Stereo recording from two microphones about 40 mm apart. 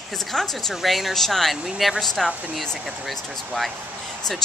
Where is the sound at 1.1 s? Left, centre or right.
Centre.